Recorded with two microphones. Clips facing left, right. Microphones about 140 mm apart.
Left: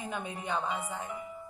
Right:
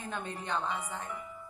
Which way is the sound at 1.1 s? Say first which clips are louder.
Left 2 dB; 25° left (ahead or behind).